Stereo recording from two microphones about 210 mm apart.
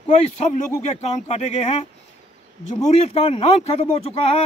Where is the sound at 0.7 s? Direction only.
30° left (ahead or behind).